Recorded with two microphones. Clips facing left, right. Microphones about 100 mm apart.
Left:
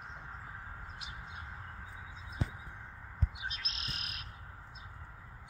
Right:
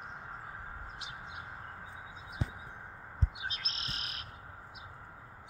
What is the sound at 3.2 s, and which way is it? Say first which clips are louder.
Bird: right 1 dB; 30° right (ahead or behind).